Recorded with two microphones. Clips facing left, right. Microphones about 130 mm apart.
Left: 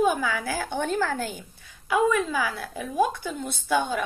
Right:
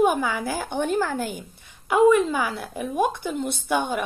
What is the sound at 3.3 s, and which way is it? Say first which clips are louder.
Speech: right 5 dB; 55° right (ahead or behind).